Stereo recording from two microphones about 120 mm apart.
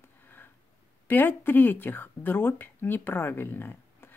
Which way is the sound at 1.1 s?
15° left (ahead or behind).